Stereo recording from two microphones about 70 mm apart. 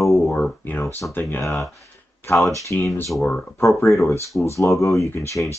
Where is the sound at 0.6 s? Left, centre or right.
Left.